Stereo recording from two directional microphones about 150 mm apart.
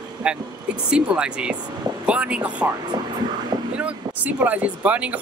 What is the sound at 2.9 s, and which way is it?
Speech, 30° right (ahead or behind).